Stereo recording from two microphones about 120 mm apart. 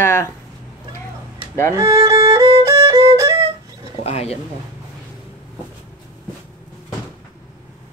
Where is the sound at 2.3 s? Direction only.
30° right (ahead or behind).